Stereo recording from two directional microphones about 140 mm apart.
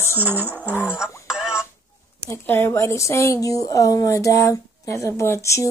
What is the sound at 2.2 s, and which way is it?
Speech, 15° left (ahead or behind).